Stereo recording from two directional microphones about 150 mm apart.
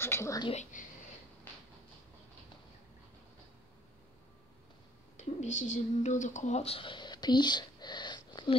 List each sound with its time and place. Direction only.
0.0 s a woman's voice: 15° left (ahead or behind)
0.6 s a sound: 60° left (ahead or behind)
5.1 s speech: 55° left (ahead or behind); by 8.5 s 30° left (ahead or behind)